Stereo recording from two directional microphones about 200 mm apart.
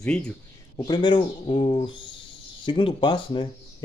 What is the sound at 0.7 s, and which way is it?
Speech, 20° left (ahead or behind).